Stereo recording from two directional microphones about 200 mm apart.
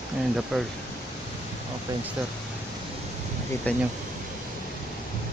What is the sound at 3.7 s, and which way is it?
Speech, 5° left (ahead or behind).